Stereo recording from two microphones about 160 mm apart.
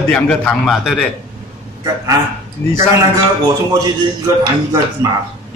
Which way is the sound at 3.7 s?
25° right (ahead or behind).